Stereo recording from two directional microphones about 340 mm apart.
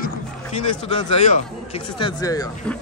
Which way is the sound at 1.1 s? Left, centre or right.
Centre.